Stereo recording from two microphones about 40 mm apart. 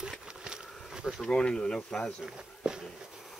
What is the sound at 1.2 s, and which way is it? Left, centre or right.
Speech, left.